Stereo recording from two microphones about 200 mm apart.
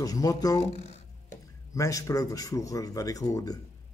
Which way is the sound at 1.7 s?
15° left (ahead or behind).